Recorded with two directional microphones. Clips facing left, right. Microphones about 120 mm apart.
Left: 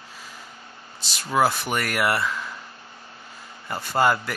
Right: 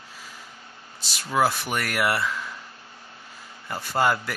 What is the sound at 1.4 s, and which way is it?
Speech, centre (ahead or behind).